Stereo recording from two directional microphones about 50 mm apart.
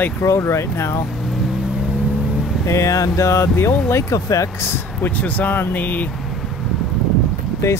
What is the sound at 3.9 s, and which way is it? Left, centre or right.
Speech, left.